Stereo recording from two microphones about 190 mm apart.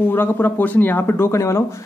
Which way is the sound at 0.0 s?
10° left (ahead or behind).